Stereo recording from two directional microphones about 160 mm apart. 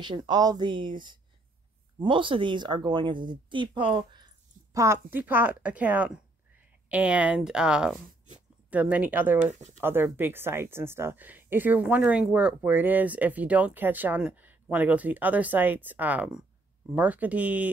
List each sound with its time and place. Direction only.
0.0 s speech: 25° right (ahead or behind)
4.7 s speech: 15° right (ahead or behind)
9.5 s speech: 45° right (ahead or behind)
9.8 s speech: 15° right (ahead or behind)